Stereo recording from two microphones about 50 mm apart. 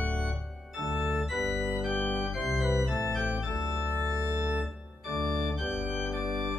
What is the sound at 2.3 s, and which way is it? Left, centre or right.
Organ, centre.